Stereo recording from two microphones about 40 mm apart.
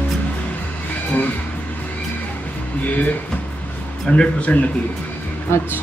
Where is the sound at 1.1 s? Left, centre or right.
Left.